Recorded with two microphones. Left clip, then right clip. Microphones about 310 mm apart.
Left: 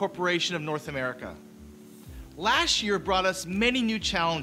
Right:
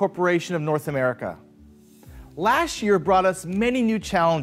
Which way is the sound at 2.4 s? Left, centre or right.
Right.